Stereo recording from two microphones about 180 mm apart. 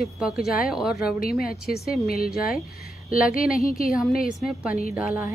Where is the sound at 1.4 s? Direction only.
60° left (ahead or behind).